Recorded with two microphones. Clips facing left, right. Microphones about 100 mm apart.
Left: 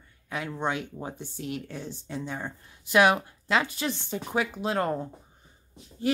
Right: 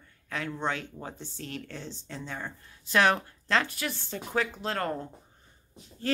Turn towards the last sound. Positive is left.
turn(degrees=15)  # may be behind; listen again after turning